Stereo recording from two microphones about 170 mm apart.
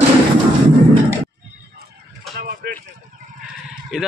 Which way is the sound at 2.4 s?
55° right (ahead or behind).